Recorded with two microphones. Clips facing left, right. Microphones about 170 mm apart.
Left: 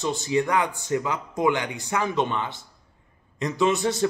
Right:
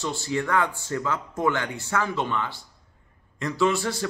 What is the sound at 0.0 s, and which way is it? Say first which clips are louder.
A man's voice: left 4 dB; 20° left (ahead or behind).